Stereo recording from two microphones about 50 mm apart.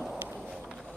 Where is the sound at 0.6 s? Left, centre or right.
Centre.